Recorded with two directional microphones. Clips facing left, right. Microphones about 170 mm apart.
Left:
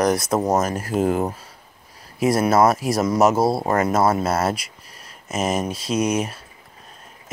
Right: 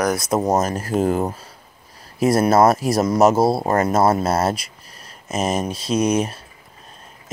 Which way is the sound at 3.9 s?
35° right (ahead or behind).